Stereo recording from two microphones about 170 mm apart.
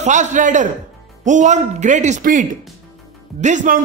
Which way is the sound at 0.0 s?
45° right (ahead or behind).